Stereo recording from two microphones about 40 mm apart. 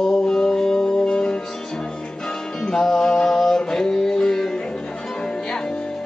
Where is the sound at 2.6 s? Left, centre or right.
Centre.